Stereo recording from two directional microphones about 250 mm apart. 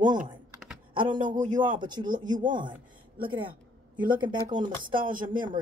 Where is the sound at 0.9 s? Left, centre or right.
Centre.